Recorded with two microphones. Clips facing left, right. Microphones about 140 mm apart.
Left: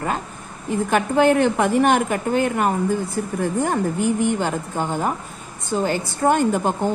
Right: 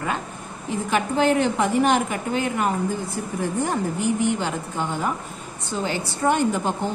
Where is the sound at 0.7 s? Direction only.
55° left (ahead or behind).